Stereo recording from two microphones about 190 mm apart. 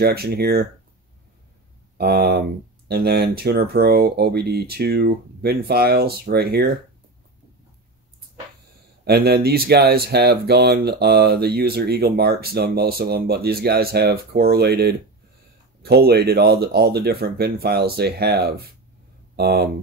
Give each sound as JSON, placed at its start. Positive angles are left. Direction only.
{"t": 0.0, "sound": "speech", "side_deg": -55}
{"t": 2.0, "sound": "speech", "side_deg": -55}
{"t": 9.0, "sound": "speech", "side_deg": -55}